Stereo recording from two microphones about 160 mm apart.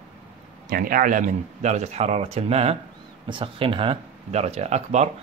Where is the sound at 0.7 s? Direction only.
60° right (ahead or behind).